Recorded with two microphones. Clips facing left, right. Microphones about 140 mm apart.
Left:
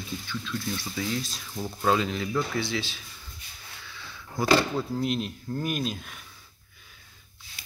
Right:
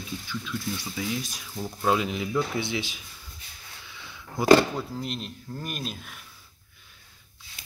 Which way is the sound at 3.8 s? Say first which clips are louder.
Even; 15° right (ahead or behind).